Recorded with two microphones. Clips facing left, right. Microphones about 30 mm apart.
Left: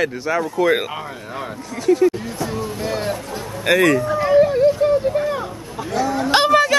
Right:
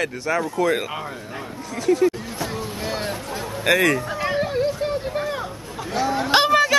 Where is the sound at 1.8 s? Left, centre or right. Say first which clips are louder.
Left 3 dB; centre.